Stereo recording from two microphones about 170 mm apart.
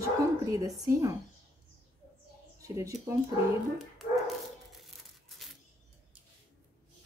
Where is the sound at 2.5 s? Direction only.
15° right (ahead or behind).